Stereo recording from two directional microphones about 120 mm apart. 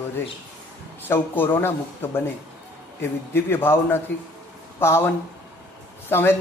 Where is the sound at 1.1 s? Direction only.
20° left (ahead or behind).